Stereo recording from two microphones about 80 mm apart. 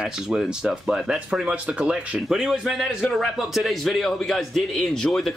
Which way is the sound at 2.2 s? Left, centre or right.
Centre.